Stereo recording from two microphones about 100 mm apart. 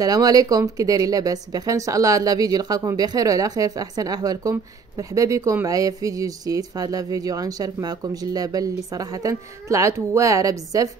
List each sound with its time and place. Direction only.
0.0 s a woman's voice: 40° right (ahead or behind)